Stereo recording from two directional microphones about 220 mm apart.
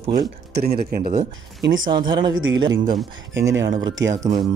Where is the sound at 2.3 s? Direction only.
60° right (ahead or behind).